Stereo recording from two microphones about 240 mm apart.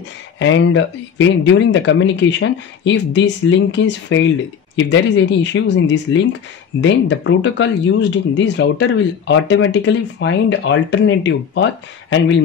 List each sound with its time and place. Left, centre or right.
0.4 s speech: left